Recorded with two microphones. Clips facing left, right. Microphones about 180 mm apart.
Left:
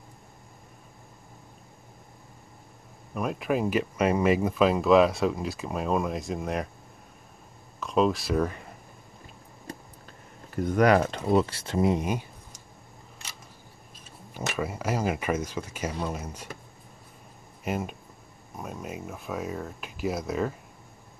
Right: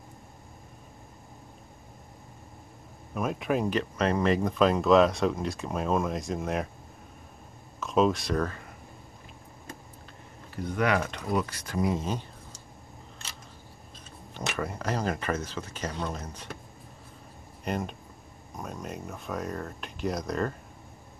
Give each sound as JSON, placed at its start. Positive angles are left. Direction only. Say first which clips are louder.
{"t": 3.2, "sound": "speech", "louder": "left 1 dB", "side_deg": 0}
{"t": 7.8, "sound": "speech", "louder": "even", "side_deg": 0}
{"t": 10.5, "sound": "speech", "louder": "left 6 dB", "side_deg": 45}
{"t": 11.0, "sound": "speech", "louder": "left 6 dB", "side_deg": 25}
{"t": 14.3, "sound": "speech", "louder": "left 2 dB", "side_deg": 5}
{"t": 17.6, "sound": "speech", "louder": "left 1 dB", "side_deg": 5}